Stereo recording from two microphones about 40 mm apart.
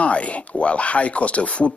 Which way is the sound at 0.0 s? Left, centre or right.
Left.